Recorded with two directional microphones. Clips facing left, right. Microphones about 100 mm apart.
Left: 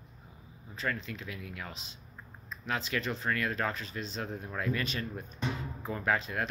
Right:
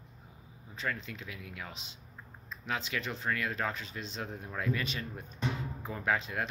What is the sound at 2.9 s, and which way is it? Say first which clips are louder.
Speech: left 4 dB; 35° left (ahead or behind).